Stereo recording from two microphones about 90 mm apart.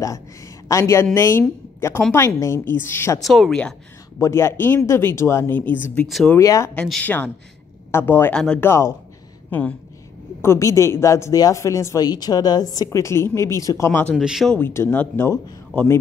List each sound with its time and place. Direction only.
0.7 s a woman's voice: 35° left (ahead or behind)
3.2 s speech: centre (ahead or behind)
4.2 s speech: 30° left (ahead or behind)
6.3 s a woman's voice: 35° left (ahead or behind)
7.0 s speech: 20° left (ahead or behind)
8.3 s a man's voice: 10° left (ahead or behind)
8.6 s a woman's voice: 30° left (ahead or behind)
9.5 s a man's voice: 15° left (ahead or behind)
10.4 s a woman's voice: 35° left (ahead or behind)
13.0 s a woman's voice: 30° left (ahead or behind)
14.1 s speech: 5° right (ahead or behind)
14.6 s a man's voice: 25° left (ahead or behind)